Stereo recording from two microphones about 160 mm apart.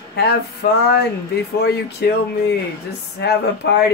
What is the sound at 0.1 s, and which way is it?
Speech, 90° left.